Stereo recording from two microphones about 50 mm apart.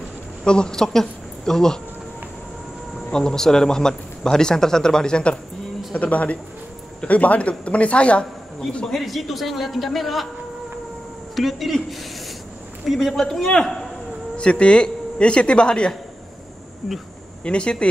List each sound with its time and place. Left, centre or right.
0.4 s speech: centre
3.1 s speech: centre
5.9 s speech: left
8.8 s a man's voice: centre
11.3 s a man's voice: centre
12.8 s a man's voice: centre
14.3 s speech: left
17.4 s speech: centre